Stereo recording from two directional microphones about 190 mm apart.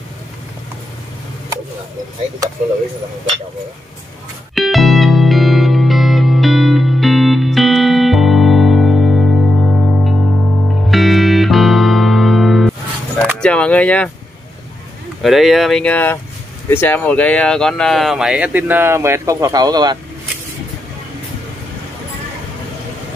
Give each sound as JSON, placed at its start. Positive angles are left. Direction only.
{"t": 4.6, "sound": "music", "side_deg": 0}
{"t": 13.4, "sound": "speech", "side_deg": 5}
{"t": 15.2, "sound": "speech", "side_deg": 0}